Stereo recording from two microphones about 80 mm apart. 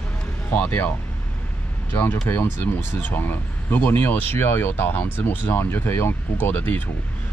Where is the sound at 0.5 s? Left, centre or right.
Left.